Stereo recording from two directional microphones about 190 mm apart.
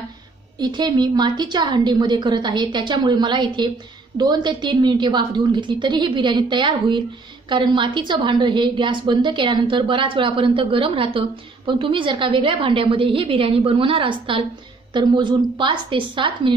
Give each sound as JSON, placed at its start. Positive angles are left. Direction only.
{"t": 0.6, "sound": "a woman's voice", "side_deg": -20}